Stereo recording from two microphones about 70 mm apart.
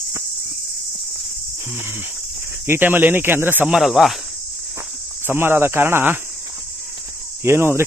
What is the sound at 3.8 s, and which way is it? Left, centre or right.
Speech, centre.